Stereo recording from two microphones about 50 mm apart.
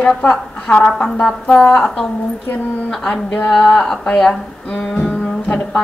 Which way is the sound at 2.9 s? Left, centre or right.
Centre.